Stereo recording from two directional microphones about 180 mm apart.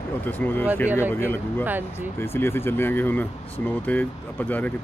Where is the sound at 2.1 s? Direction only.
15° left (ahead or behind).